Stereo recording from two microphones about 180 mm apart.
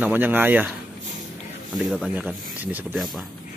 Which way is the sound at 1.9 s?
5° right (ahead or behind).